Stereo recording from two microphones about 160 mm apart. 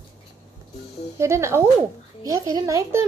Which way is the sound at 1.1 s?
15° right (ahead or behind).